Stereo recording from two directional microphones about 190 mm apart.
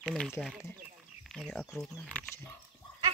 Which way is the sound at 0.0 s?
5° left (ahead or behind).